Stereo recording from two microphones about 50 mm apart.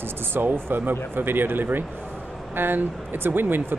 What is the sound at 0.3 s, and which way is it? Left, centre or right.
Speech, right.